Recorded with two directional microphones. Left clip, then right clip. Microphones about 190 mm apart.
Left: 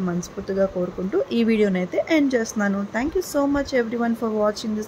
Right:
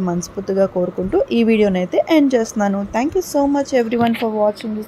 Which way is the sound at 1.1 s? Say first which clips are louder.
Right 6 dB; 20° right (ahead or behind).